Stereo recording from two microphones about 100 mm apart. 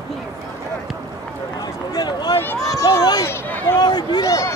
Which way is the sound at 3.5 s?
20° left (ahead or behind).